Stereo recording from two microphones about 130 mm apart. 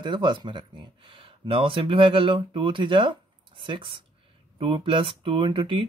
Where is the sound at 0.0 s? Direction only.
35° right (ahead or behind).